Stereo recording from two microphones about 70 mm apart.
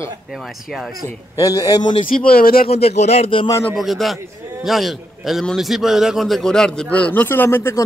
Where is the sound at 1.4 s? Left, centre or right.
Left.